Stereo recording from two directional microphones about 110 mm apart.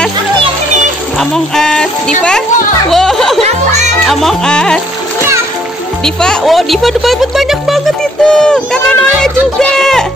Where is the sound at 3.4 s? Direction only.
90° right.